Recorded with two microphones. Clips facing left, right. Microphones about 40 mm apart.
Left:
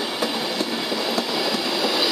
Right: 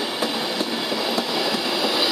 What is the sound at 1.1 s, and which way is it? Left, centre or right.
Train, centre.